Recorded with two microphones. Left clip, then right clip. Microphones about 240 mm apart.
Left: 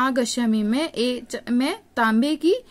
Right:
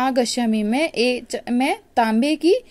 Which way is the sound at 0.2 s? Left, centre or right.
Left.